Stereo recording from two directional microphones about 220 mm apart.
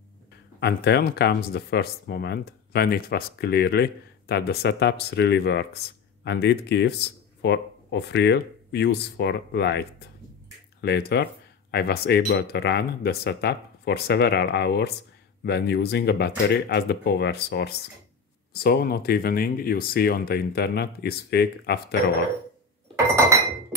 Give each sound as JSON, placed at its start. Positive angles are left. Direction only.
{"t": 0.6, "sound": "speech", "side_deg": 50}